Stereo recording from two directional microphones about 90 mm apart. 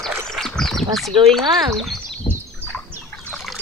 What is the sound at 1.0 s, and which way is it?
Speech, 5° left (ahead or behind).